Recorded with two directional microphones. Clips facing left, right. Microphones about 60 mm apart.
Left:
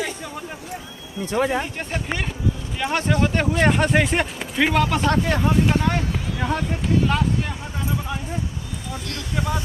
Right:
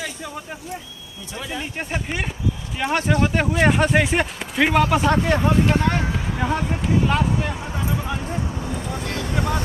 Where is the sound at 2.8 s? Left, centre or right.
Centre.